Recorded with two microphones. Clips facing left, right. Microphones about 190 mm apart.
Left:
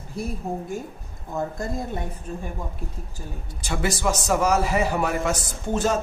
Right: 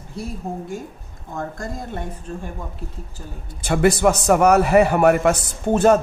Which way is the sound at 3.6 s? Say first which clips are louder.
Right 9 dB; 60° right (ahead or behind).